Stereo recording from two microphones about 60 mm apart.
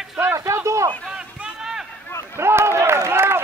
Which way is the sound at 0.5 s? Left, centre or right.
Right.